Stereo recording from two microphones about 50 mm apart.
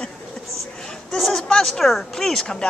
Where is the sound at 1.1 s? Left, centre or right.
Centre.